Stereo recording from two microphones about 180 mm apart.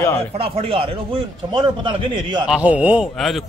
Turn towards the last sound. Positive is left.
turn(degrees=-5)  # may be behind; listen again after turning